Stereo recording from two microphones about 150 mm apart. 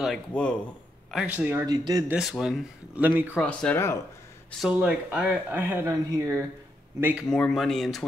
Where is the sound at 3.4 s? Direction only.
10° left (ahead or behind).